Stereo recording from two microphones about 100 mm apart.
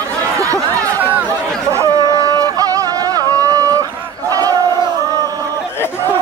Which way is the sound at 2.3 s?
35° right (ahead or behind).